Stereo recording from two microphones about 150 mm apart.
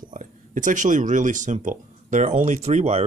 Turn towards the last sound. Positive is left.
turn(degrees=-45)  # may be behind; listen again after turning